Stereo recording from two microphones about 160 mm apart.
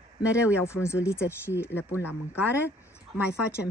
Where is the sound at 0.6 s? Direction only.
15° left (ahead or behind).